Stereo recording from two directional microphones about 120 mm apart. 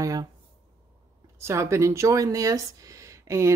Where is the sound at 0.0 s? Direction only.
30° right (ahead or behind).